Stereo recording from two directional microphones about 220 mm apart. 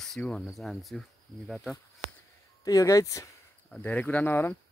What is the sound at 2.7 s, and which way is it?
Speech, 15° left (ahead or behind).